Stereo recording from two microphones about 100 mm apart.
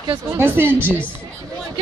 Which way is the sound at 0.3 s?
20° right (ahead or behind).